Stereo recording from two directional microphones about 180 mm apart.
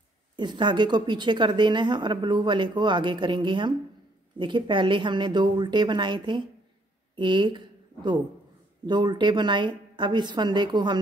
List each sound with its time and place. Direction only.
0.4 s a woman's voice: 25° right (ahead or behind)